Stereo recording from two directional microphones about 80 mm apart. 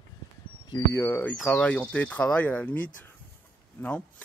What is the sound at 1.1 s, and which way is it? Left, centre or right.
Speech, left.